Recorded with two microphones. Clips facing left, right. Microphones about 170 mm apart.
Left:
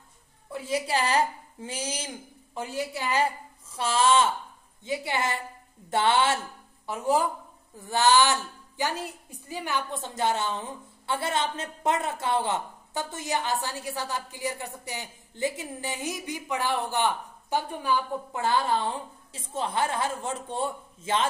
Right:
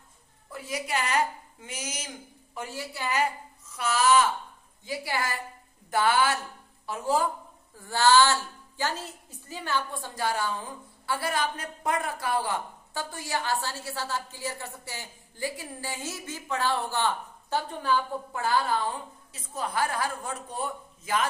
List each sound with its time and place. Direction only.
0.5 s a woman's voice: 30° left (ahead or behind)
2.5 s a woman's voice: 15° left (ahead or behind)
3.1 s a woman's voice: 30° left (ahead or behind); by 18.4 s 15° left (ahead or behind)
18.4 s a woman's voice: 25° left (ahead or behind)